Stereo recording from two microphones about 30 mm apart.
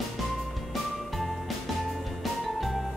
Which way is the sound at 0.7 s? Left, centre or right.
Centre.